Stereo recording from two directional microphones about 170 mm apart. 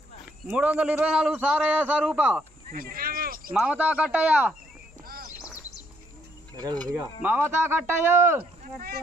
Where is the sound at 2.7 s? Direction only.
60° right (ahead or behind).